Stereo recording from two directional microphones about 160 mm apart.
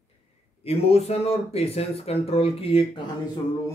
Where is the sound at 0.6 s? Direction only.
40° left (ahead or behind).